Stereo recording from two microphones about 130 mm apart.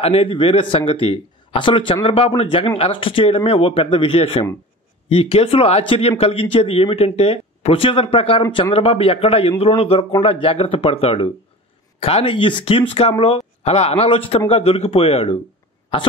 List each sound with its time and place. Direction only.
0.0 s speech: 45° left (ahead or behind)